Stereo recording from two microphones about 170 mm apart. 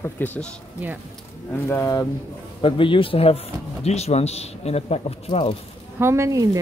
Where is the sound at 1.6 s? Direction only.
15° left (ahead or behind).